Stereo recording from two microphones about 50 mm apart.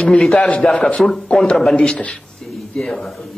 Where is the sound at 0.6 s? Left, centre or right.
Centre.